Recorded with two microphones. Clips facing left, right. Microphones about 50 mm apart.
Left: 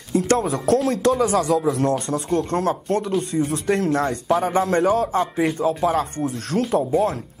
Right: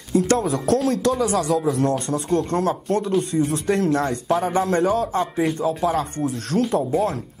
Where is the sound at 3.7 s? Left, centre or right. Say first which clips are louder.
Left 1 dB; left.